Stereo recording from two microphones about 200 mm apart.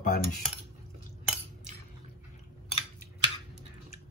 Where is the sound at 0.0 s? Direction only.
45° left (ahead or behind).